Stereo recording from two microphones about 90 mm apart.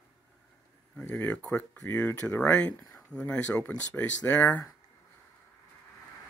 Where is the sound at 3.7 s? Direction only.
50° left (ahead or behind).